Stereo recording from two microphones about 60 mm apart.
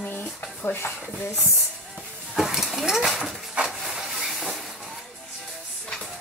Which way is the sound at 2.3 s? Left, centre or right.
Centre.